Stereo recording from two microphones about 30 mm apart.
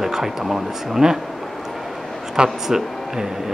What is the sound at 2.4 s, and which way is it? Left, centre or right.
Speech, centre.